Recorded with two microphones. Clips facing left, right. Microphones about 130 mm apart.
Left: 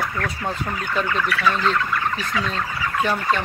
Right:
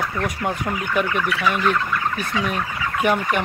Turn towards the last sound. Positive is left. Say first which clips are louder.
# right 1 dB
turn(degrees=-15)  # may be behind; listen again after turning